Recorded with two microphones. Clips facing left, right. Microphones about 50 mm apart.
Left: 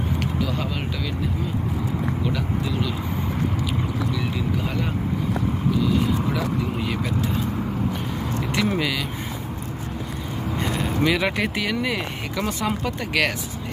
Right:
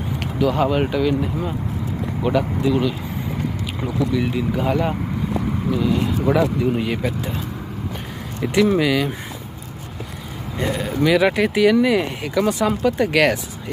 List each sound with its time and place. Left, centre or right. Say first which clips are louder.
0.4 s speech: right 13 dB; centre
0.7 s speech: right 10 dB; centre
4.1 s speech: right 5 dB; centre
8.7 s speech: right 6 dB; centre
10.8 s speech: right 5 dB; centre